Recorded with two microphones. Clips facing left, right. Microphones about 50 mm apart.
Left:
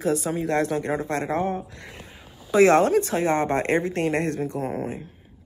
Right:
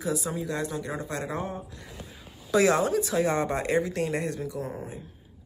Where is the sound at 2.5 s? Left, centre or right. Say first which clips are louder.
Left 6 dB; left.